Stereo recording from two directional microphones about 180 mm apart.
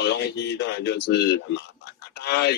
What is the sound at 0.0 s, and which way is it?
Speech, 75° left (ahead or behind).